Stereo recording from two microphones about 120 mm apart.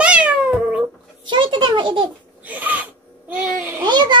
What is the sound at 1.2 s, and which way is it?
Speech, 40° right (ahead or behind).